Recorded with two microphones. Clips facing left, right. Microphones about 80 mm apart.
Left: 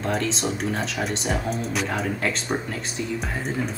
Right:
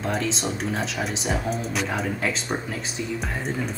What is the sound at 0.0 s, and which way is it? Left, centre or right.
Speech, centre.